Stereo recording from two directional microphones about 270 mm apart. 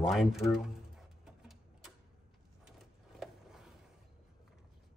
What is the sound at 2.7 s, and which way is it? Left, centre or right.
Vehicle, centre.